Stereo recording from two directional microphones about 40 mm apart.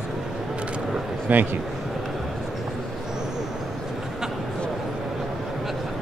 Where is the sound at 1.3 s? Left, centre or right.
Right.